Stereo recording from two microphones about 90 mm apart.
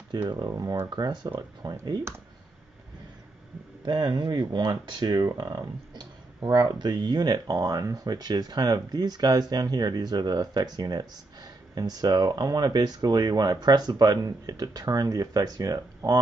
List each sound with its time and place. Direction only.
0.1 s speech: 50° right (ahead or behind)
0.8 s speech: 50° right (ahead or behind)
3.8 s speech: 50° right (ahead or behind)